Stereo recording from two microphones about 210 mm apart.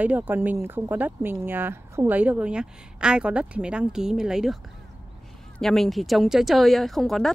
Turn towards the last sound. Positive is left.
turn(degrees=0)  # may be behind; listen again after turning